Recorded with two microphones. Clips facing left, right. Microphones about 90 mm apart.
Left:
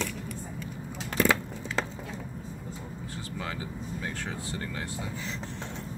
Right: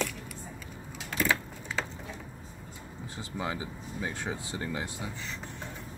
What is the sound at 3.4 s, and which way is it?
Speech, 15° right (ahead or behind).